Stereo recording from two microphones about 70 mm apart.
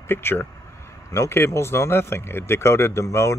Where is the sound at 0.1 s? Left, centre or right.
Left.